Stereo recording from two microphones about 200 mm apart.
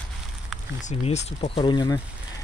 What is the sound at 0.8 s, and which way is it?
Speech, 35° left (ahead or behind).